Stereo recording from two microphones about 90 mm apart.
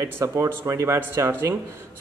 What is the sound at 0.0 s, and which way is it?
Speech, 35° right (ahead or behind).